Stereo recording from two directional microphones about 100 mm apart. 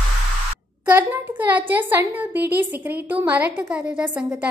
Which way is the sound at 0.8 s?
20° right (ahead or behind).